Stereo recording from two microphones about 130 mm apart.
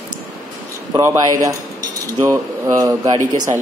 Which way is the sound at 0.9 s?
25° right (ahead or behind).